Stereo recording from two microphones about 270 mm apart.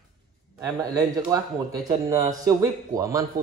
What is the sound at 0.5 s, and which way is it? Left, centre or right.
A man's voice, centre.